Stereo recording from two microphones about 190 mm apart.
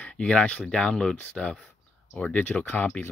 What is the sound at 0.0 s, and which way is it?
Speech, 5° left (ahead or behind).